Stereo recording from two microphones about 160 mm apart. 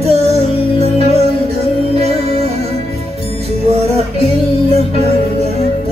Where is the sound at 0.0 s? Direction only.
40° right (ahead or behind).